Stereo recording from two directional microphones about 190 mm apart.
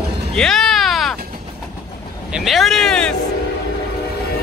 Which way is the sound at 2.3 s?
Centre (ahead or behind).